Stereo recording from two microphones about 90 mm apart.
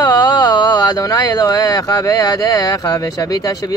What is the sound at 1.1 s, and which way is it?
Speech, 40° left (ahead or behind).